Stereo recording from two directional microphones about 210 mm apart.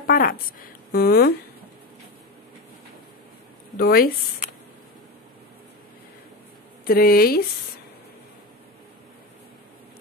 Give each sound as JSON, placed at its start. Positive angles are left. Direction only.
{"t": 0.0, "sound": "a woman's voice", "side_deg": 45}
{"t": 3.7, "sound": "speech", "side_deg": 45}
{"t": 6.8, "sound": "speech", "side_deg": 45}